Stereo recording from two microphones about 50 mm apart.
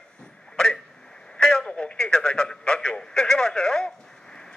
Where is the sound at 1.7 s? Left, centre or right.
Left.